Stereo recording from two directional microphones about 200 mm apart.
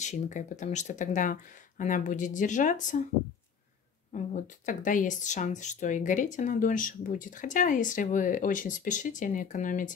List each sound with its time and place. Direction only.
0.0 s speech: 40° left (ahead or behind)
4.1 s speech: 40° left (ahead or behind)